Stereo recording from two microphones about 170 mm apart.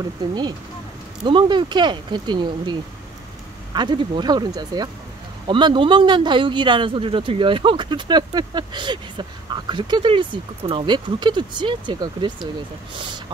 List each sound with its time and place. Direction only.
0.3 s speech: 25° right (ahead or behind)